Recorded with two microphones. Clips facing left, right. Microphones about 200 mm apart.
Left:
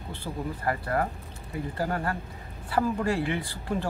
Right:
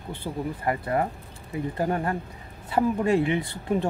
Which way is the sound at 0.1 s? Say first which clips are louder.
Right 3 dB; 20° right (ahead or behind).